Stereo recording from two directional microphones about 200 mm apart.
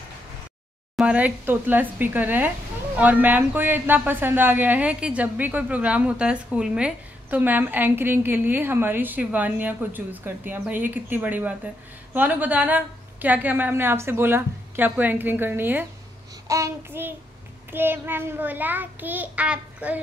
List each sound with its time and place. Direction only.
0.9 s speech: 5° right (ahead or behind)